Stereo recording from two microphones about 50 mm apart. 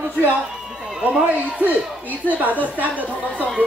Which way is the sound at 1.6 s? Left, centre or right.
Right.